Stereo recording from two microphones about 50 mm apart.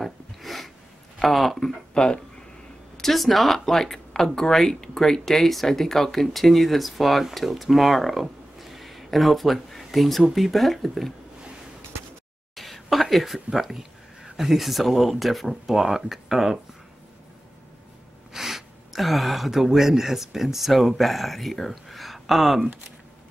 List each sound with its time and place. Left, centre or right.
0.0 s a sound: centre
1.2 s speech: centre
2.0 s speech: centre
3.0 s speech: centre
12.5 s speech: centre
18.3 s speech: centre